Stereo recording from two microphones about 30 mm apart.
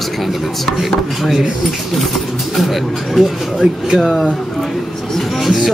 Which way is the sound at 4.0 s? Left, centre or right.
Centre.